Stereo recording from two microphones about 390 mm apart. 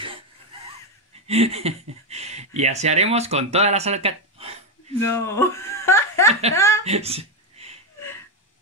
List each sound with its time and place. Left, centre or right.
1.2 s speech: centre
5.1 s a woman's voice: centre
6.8 s a sound: centre